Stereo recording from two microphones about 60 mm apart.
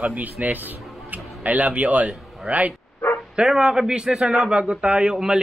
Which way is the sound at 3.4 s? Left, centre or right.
Centre.